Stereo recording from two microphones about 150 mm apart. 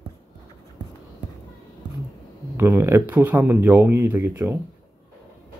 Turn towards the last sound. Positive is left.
turn(degrees=-15)  # may be behind; listen again after turning